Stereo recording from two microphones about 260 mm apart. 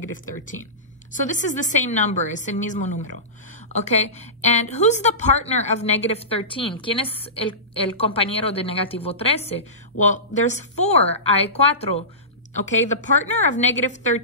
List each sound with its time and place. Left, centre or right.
1.1 s a woman's voice: left
13.0 s a woman's voice: left